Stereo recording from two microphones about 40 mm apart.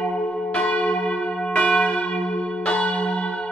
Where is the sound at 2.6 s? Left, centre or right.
Left.